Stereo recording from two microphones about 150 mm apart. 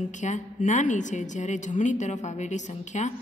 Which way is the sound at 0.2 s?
55° left (ahead or behind).